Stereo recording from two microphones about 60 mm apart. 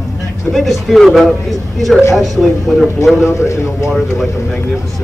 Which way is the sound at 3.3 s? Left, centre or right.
Left.